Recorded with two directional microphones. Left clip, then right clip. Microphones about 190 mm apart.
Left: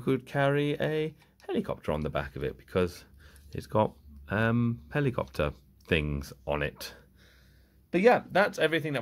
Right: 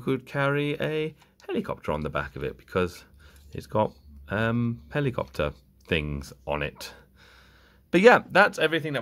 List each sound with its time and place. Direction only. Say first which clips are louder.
0.0 s speech: right 1 dB; centre (ahead or behind)
7.9 s speech: right 6 dB; 30° right (ahead or behind); by 8.9 s 10° right (ahead or behind)